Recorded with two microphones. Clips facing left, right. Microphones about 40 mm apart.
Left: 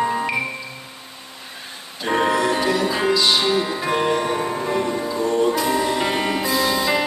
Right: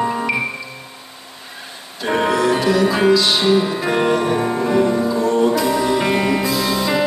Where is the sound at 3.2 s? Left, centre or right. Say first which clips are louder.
Right 1 dB; centre.